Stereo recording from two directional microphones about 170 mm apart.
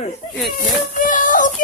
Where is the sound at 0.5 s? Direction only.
50° left (ahead or behind).